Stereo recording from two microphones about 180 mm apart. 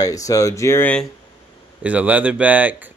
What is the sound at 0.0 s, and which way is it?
Speech, 20° left (ahead or behind).